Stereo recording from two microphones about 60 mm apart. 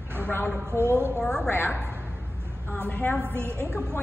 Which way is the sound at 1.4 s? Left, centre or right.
Left.